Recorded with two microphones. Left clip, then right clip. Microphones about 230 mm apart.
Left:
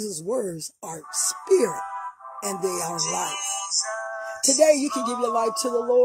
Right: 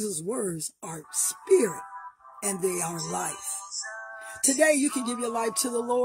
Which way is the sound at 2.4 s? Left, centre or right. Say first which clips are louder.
Left 2 dB; centre.